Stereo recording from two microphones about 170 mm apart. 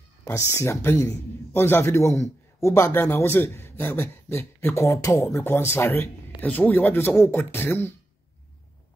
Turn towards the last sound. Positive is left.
turn(degrees=10)  # may be behind; listen again after turning